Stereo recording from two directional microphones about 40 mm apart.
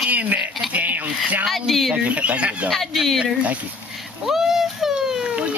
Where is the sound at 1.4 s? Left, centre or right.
Centre.